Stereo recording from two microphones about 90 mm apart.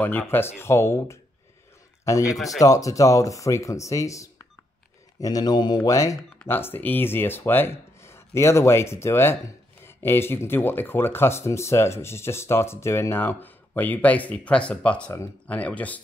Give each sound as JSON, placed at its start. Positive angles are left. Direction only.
{"t": 0.0, "sound": "speech", "side_deg": 20}
{"t": 2.3, "sound": "speech", "side_deg": 0}
{"t": 2.6, "sound": "speech", "side_deg": 40}
{"t": 5.2, "sound": "speech", "side_deg": 45}
{"t": 5.9, "sound": "speech", "side_deg": 35}
{"t": 6.4, "sound": "speech", "side_deg": 25}